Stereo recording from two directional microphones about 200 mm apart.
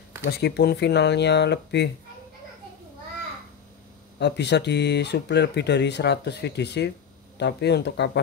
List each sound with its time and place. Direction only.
0.2 s speech: 55° left (ahead or behind)
4.2 s speech: 55° left (ahead or behind)